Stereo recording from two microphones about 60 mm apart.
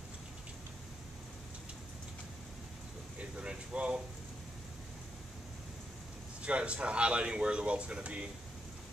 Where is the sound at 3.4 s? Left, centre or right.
Centre.